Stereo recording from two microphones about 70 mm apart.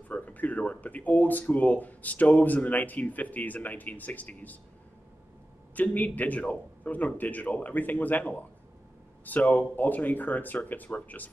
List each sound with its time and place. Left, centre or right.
0.1 s speech: left
5.8 s speech: left